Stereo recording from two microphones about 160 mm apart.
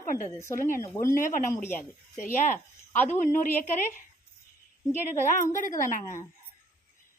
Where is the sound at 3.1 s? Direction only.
55° left (ahead or behind).